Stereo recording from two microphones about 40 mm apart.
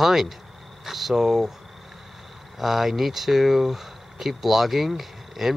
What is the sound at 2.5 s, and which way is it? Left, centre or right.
Speech, centre.